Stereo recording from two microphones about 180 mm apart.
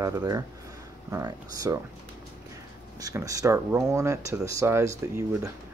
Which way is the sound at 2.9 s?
20° right (ahead or behind).